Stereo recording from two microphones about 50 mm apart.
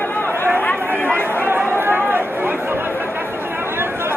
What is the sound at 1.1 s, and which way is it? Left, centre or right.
Chatter, right.